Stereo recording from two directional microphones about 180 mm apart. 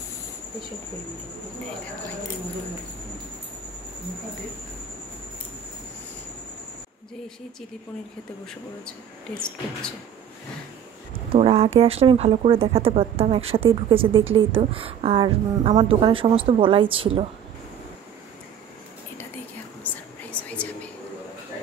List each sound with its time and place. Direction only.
8.8 s speech: 5° left (ahead or behind)
11.3 s speech: 35° right (ahead or behind)
19.8 s whispering: 10° left (ahead or behind)